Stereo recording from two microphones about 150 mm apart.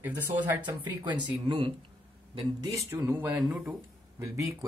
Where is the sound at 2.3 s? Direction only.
25° right (ahead or behind); by 3.7 s 10° right (ahead or behind).